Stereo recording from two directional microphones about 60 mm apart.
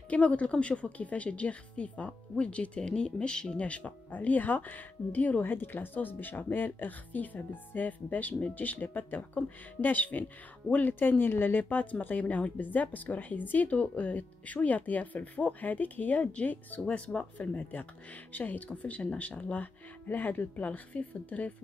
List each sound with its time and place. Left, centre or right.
0.1 s a woman's voice: left